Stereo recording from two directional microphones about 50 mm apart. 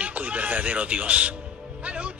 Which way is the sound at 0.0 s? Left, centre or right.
Right.